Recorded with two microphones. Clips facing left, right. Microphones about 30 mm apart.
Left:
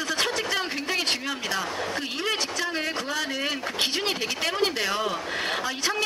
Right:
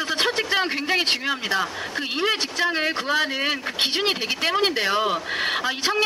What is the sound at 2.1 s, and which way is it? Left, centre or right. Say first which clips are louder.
A man's voice: right 6 dB; right.